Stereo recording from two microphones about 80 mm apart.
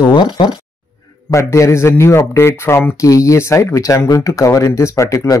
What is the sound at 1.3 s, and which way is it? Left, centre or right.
Speech, left.